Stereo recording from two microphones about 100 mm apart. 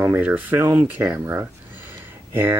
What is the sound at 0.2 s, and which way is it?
Speech, 15° right (ahead or behind).